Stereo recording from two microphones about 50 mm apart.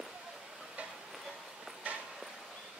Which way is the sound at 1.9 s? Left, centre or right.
Right.